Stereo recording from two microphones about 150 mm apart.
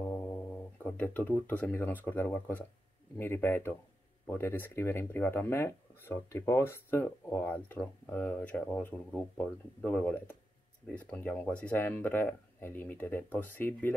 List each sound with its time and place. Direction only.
0.0 s speech: 10° left (ahead or behind)